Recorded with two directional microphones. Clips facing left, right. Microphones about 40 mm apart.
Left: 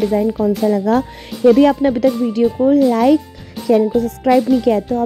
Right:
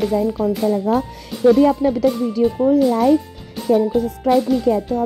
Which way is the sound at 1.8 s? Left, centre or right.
Left.